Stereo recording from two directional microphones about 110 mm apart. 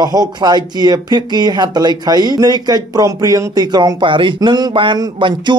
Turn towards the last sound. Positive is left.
turn(degrees=-45)  # may be behind; listen again after turning